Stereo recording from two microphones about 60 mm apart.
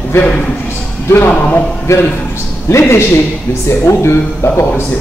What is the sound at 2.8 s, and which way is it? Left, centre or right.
Speech, left.